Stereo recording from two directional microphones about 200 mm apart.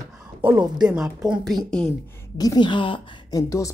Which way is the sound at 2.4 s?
20° left (ahead or behind).